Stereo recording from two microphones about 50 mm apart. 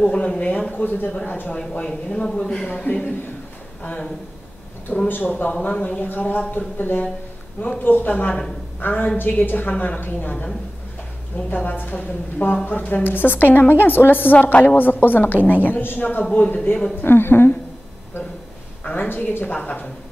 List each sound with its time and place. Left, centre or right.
0.0 s a woman's voice: left
2.0 s a man's voice: left
2.6 s speech: left
5.0 s a woman's voice: left
5.5 s a woman's voice: left
11.3 s a woman's voice: left
17.0 s a woman's voice: left
19.0 s a woman's voice: left
19.4 s speech: left